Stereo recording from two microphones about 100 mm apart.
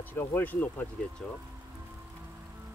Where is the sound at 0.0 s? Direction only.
20° left (ahead or behind).